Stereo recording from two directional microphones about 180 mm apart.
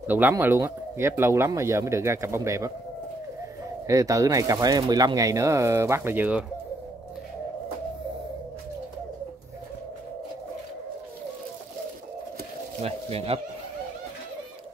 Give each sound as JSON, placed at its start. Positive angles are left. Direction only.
{"t": 0.0, "sound": "speech", "side_deg": -10}
{"t": 3.8, "sound": "speech", "side_deg": -20}
{"t": 12.8, "sound": "speech", "side_deg": -35}